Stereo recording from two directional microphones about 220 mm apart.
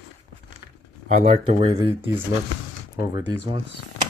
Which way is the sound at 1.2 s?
30° right (ahead or behind).